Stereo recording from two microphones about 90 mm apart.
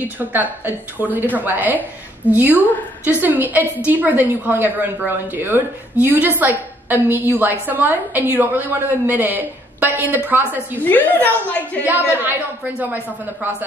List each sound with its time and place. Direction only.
0.2 s a woman's voice: 20° right (ahead or behind)
11.1 s a woman's voice: 20° left (ahead or behind)
11.8 s a woman's voice: 20° right (ahead or behind)